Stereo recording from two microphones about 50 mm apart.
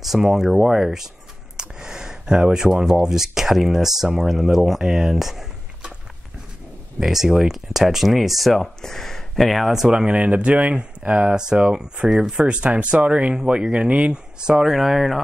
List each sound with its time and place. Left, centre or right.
0.0 s speech: centre
7.0 s speech: centre
9.8 s speech: centre